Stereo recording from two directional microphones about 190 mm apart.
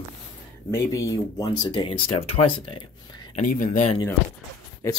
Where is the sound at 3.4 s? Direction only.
45° left (ahead or behind).